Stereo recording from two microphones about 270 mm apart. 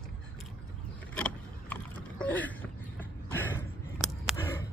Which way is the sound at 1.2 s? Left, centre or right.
Centre.